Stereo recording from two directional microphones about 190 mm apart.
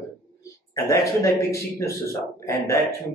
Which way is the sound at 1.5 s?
15° left (ahead or behind).